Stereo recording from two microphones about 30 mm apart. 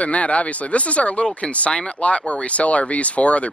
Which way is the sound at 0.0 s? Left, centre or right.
Left.